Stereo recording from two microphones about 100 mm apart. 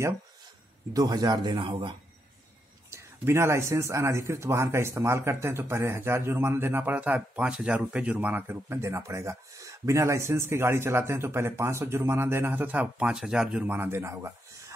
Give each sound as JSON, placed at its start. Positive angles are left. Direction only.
{"t": 0.9, "sound": "speech", "side_deg": -40}
{"t": 2.9, "sound": "speech", "side_deg": -25}